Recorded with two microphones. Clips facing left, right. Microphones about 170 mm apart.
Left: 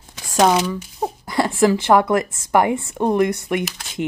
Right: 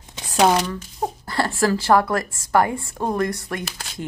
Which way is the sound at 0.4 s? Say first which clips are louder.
Left 2 dB; centre (ahead or behind).